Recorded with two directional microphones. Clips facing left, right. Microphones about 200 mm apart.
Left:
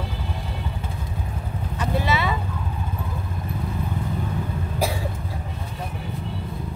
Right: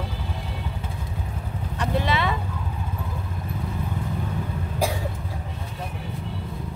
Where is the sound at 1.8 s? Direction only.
5° left (ahead or behind).